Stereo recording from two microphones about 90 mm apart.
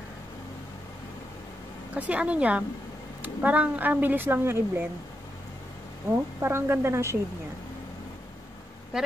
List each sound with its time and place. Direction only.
2.0 s a woman's voice: 15° right (ahead or behind)
6.4 s speech: 30° right (ahead or behind)
8.9 s quack: 5° right (ahead or behind)